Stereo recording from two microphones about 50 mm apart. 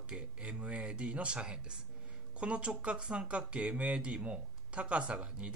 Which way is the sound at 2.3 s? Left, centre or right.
Right.